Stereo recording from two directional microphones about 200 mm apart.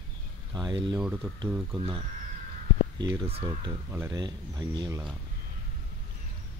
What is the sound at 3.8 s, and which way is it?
Speech, 15° right (ahead or behind).